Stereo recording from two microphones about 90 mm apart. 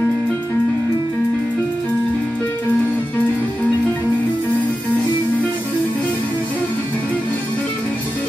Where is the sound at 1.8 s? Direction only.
20° left (ahead or behind).